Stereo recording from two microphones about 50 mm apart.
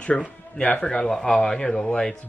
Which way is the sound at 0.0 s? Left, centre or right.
Left.